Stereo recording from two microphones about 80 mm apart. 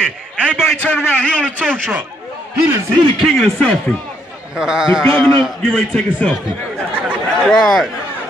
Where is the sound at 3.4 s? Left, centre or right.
Centre.